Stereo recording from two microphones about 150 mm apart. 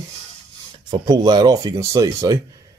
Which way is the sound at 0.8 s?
30° right (ahead or behind).